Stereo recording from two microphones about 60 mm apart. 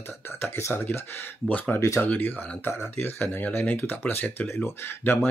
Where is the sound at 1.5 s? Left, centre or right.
Left.